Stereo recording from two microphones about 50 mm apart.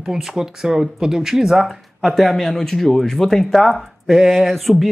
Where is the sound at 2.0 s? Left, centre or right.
Centre.